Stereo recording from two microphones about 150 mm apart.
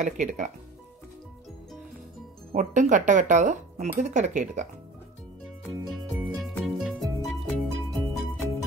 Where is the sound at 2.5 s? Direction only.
65° right (ahead or behind).